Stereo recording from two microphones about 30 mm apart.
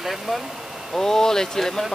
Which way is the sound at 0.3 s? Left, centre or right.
Centre.